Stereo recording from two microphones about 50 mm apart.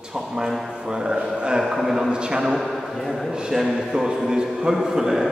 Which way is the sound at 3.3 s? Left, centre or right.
Centre.